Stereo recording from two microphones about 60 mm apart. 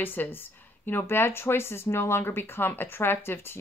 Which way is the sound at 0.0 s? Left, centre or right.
Left.